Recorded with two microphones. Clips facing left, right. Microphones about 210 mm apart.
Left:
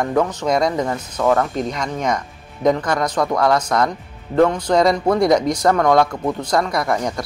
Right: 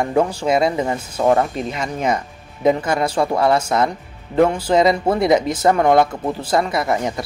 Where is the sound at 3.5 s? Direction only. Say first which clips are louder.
Even; 10° right (ahead or behind).